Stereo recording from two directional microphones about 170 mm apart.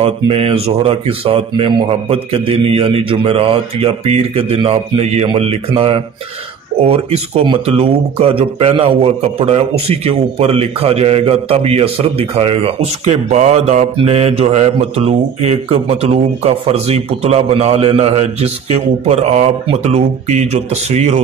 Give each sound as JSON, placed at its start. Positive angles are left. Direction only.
{"t": 0.0, "sound": "speech", "side_deg": -35}